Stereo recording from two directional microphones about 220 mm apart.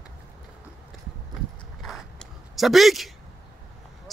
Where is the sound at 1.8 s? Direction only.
Centre (ahead or behind).